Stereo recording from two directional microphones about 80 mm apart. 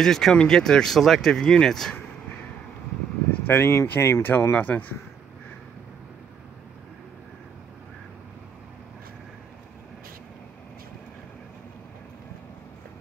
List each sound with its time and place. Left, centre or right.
0.0 s speech: centre
3.3 s vehicle: left
3.6 s speech: left
4.6 s speech: centre